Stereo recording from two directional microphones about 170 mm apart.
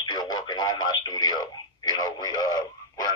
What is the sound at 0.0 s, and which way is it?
Radio, 25° left (ahead or behind).